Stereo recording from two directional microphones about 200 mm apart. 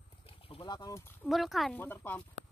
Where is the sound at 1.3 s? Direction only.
Centre (ahead or behind).